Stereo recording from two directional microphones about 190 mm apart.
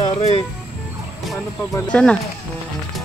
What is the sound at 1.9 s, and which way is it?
Speech, 5° left (ahead or behind).